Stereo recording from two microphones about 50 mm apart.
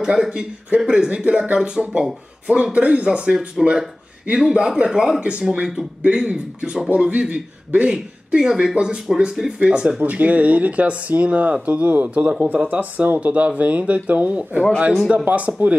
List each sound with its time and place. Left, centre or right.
0.0 s speech: centre
6.0 s speech: right
7.1 s speech: right